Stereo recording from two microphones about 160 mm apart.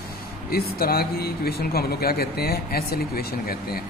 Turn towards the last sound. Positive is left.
turn(degrees=70)  # may be behind; listen again after turning